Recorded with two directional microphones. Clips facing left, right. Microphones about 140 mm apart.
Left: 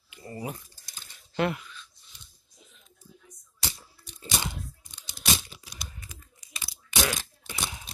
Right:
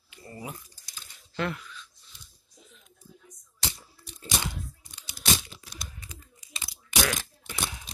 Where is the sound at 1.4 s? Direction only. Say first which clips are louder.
Left 4 dB; 15° left (ahead or behind).